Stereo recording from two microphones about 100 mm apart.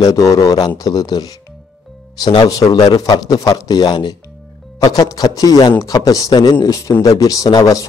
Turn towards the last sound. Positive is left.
turn(degrees=35)  # may be behind; listen again after turning